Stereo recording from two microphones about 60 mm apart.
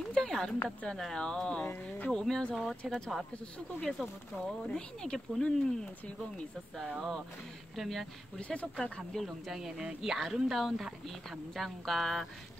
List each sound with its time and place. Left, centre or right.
0.1 s a sound: centre
0.7 s speech: centre
4.4 s speech: centre
7.7 s speech: centre
8.4 s speech: centre
9.2 s speech: centre